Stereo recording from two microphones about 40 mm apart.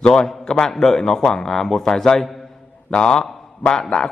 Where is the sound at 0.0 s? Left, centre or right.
Centre.